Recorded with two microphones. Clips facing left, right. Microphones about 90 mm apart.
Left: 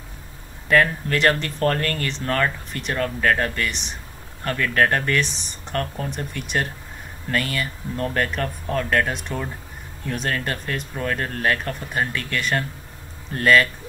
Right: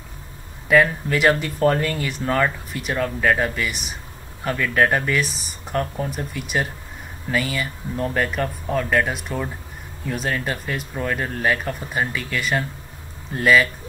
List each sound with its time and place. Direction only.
0.7 s speech: 5° right (ahead or behind)